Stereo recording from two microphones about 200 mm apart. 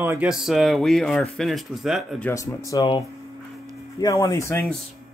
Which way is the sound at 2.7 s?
15° left (ahead or behind).